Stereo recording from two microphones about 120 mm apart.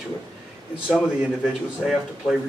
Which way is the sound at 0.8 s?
5° right (ahead or behind).